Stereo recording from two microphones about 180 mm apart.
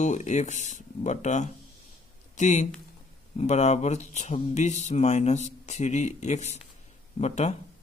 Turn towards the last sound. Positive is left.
turn(degrees=40)  # may be behind; listen again after turning